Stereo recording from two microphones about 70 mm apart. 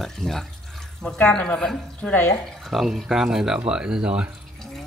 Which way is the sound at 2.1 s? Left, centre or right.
Left.